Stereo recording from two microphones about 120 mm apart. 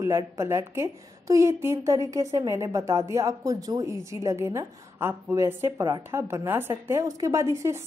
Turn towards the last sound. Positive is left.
turn(degrees=-25)  # may be behind; listen again after turning